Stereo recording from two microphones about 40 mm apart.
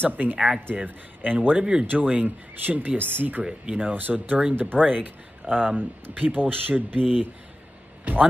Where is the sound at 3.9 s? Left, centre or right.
Right.